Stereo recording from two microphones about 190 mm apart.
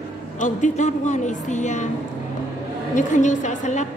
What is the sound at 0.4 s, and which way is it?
A woman's voice, 40° left (ahead or behind).